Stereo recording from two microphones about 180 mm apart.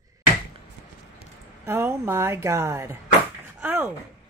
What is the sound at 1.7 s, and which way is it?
A woman's voice, 15° right (ahead or behind).